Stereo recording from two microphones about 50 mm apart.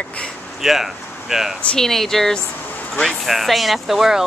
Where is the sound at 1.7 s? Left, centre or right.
Centre.